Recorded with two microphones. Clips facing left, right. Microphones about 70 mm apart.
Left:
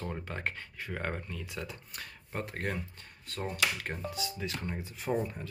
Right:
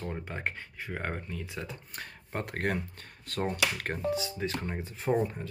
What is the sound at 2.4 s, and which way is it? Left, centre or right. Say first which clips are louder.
Speech: right 5 dB; right.